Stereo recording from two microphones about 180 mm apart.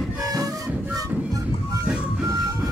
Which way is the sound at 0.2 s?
20° right (ahead or behind).